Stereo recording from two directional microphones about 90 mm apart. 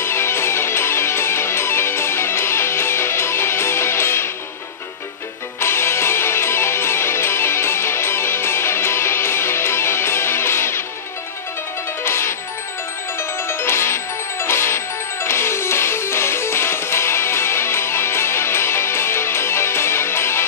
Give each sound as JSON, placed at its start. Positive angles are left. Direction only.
{"t": 0.0, "sound": "music", "side_deg": 30}
{"t": 5.6, "sound": "music", "side_deg": 30}
{"t": 12.0, "sound": "music", "side_deg": 30}
{"t": 13.5, "sound": "music", "side_deg": 30}